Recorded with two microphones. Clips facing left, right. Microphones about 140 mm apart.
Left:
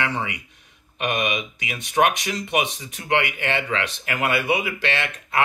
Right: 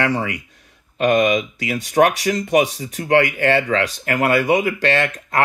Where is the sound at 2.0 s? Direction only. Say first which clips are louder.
Right 5 dB; 35° right (ahead or behind).